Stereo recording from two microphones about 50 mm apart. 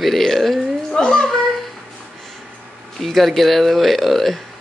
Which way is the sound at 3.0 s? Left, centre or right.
Centre.